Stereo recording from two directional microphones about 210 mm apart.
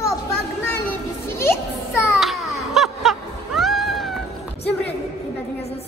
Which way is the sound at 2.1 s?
Centre (ahead or behind).